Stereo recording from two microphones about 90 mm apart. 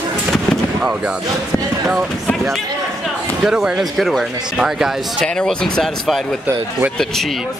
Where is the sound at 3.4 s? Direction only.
5° right (ahead or behind).